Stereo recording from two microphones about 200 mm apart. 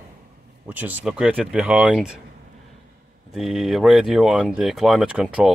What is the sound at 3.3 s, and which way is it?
Speech, centre (ahead or behind).